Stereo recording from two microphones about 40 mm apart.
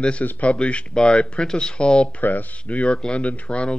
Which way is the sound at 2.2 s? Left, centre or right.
Left.